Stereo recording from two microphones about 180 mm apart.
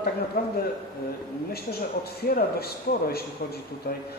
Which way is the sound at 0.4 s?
60° left (ahead or behind).